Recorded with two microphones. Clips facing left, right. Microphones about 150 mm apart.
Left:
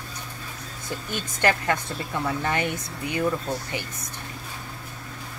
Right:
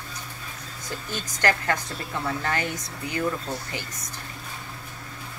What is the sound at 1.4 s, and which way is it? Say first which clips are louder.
Speech: left 1 dB; 20° left (ahead or behind).